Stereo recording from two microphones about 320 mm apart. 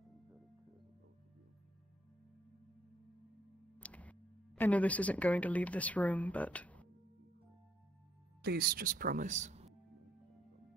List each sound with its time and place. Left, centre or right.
3.7 s speech: centre
8.4 s speech: right